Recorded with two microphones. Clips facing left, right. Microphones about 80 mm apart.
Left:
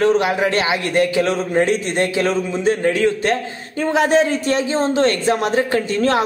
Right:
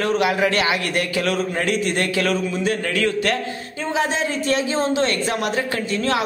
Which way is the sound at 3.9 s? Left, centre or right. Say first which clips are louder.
Left 7 dB; left.